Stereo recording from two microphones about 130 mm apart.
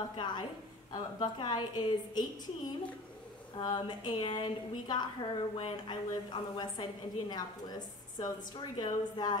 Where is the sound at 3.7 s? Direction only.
35° left (ahead or behind).